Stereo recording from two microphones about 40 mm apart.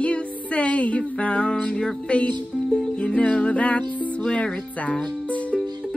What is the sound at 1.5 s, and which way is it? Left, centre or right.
Music, left.